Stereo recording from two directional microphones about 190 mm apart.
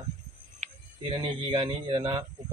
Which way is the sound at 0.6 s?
40° right (ahead or behind).